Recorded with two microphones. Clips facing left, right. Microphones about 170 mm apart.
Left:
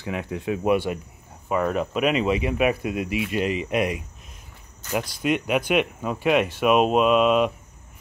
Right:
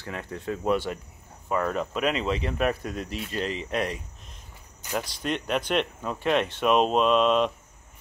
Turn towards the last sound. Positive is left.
turn(degrees=5)  # may be behind; listen again after turning